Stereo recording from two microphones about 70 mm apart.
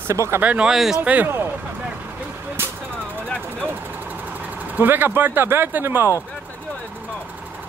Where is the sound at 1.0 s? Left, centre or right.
Right.